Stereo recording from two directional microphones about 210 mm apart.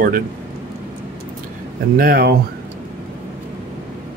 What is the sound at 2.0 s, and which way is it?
Speech, 45° right (ahead or behind).